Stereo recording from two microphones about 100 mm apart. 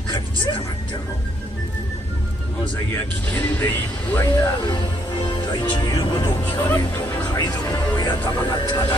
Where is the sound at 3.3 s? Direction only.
15° left (ahead or behind).